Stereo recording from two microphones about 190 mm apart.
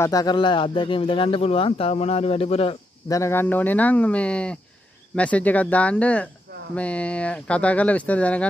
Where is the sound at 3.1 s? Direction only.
15° left (ahead or behind).